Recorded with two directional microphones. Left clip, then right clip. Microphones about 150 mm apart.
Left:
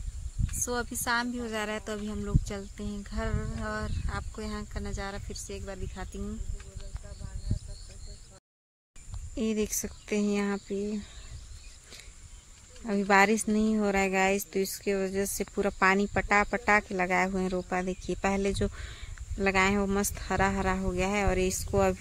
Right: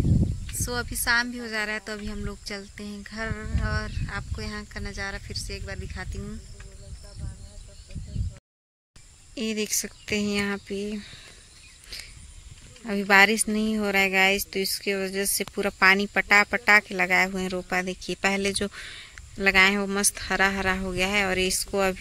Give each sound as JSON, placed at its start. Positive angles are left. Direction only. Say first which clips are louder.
{"t": 0.7, "sound": "speech", "louder": "right 5 dB", "side_deg": 5}
{"t": 2.1, "sound": "speech", "louder": "right 1 dB", "side_deg": 5}
{"t": 9.3, "sound": "speech", "louder": "right 2 dB", "side_deg": 15}
{"t": 12.8, "sound": "speech", "louder": "right 5 dB", "side_deg": 0}